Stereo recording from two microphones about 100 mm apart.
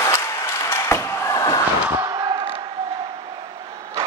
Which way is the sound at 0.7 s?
25° left (ahead or behind).